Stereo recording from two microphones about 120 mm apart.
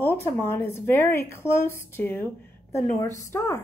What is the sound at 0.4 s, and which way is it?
Speech, 20° left (ahead or behind).